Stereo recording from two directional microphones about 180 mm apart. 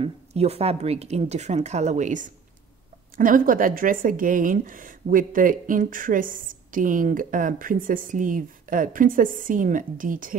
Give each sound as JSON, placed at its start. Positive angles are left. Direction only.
{"t": 0.0, "sound": "speech", "side_deg": -35}